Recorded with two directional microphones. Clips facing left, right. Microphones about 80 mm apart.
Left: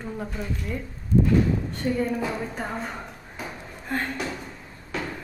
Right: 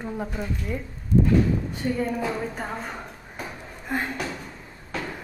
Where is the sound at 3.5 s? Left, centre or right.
Centre.